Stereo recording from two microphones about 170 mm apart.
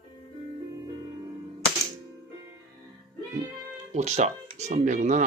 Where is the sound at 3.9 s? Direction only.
40° right (ahead or behind).